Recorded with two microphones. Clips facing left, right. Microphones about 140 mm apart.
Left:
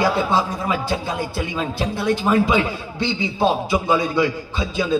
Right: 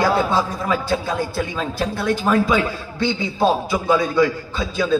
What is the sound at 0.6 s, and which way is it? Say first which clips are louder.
A man's voice: right 2 dB; 15° left (ahead or behind).